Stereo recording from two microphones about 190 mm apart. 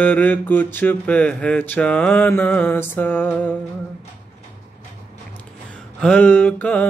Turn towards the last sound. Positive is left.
turn(degrees=10)  # may be behind; listen again after turning